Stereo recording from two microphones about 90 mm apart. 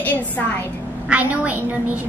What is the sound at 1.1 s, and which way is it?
Speech, 15° right (ahead or behind).